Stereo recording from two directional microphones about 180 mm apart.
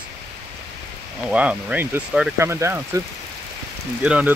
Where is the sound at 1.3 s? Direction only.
5° right (ahead or behind).